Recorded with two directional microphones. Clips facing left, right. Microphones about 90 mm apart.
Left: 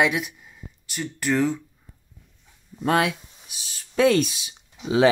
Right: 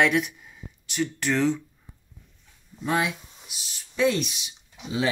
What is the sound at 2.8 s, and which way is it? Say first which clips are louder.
Speech: left 4 dB; 90° left.